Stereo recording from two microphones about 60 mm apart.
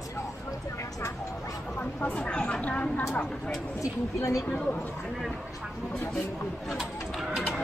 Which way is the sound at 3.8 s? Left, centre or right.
Left.